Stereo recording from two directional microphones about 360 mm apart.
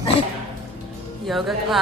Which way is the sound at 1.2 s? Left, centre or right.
Centre.